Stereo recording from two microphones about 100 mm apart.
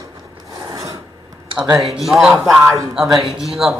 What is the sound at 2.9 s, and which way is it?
Speech, centre (ahead or behind).